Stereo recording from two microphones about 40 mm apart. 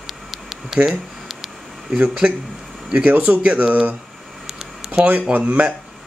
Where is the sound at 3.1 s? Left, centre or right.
Right.